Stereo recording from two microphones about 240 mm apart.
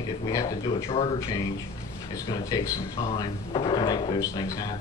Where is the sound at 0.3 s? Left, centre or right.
Centre.